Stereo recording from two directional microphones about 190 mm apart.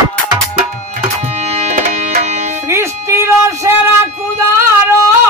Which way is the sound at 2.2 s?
35° right (ahead or behind).